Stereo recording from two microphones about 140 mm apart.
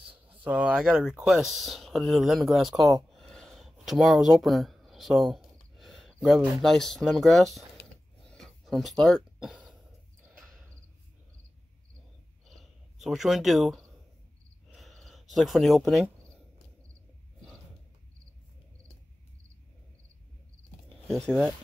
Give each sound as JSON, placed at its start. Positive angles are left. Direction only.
{"t": 0.0, "sound": "speech", "side_deg": -10}
{"t": 13.0, "sound": "speech", "side_deg": 0}
{"t": 14.7, "sound": "cricket", "side_deg": 0}
{"t": 21.1, "sound": "speech", "side_deg": -5}